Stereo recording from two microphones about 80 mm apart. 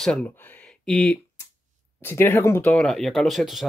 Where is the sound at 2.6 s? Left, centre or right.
Centre.